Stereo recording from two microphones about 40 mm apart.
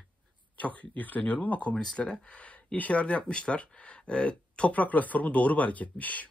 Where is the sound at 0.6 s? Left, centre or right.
Left.